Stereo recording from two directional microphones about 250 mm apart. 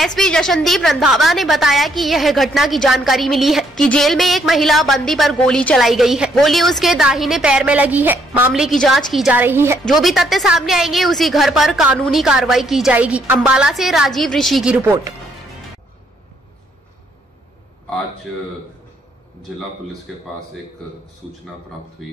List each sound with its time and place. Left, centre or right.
0.0 s a woman's voice: centre
22.0 s a woman's voice: centre